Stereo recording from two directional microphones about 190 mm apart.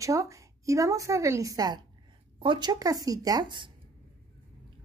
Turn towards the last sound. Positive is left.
turn(degrees=-25)  # may be behind; listen again after turning